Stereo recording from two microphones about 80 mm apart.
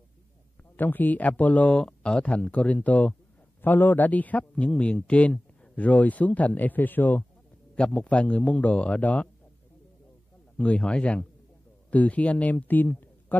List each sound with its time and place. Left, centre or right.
0.7 s a man's voice: left
10.6 s speech: centre